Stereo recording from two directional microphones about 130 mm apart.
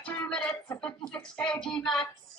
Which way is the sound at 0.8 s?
5° left (ahead or behind).